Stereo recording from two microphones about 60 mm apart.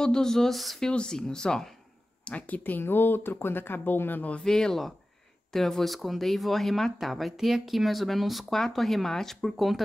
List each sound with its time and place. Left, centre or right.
0.0 s speech: centre
0.8 s speech: centre
2.2 s speech: left
4.3 s speech: centre